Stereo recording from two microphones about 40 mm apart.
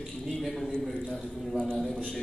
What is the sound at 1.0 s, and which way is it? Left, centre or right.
Speech, left.